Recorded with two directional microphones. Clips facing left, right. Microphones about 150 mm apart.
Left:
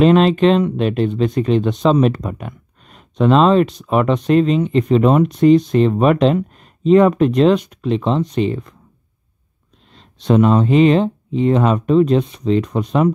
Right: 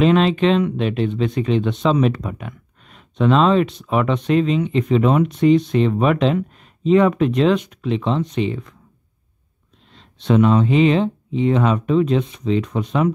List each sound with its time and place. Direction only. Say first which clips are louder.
0.0 s speech: left 4 dB; 45° left (ahead or behind)
9.9 s speech: left 2 dB; 40° left (ahead or behind)